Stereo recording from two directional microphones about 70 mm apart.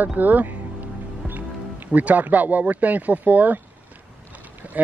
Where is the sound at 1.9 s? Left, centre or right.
Right.